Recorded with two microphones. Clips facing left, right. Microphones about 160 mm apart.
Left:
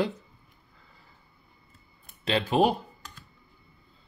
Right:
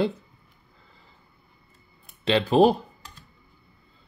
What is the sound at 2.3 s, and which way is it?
Speech, 30° right (ahead or behind).